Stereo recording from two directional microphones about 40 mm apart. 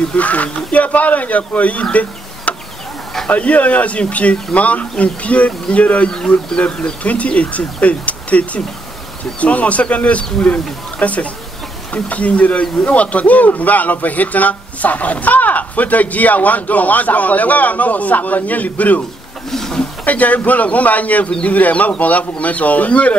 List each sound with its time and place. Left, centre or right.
0.1 s speech: left
6.0 s speech: left
6.6 s speech: left
19.5 s speech: centre
20.1 s speech: left
21.3 s speech: left
21.5 s speech: left